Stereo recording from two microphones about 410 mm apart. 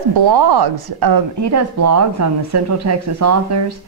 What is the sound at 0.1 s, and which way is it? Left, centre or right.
Speech, right.